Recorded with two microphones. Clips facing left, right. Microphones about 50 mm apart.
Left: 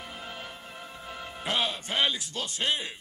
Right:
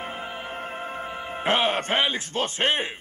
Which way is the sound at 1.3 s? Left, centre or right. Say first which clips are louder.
Right 8 dB; right.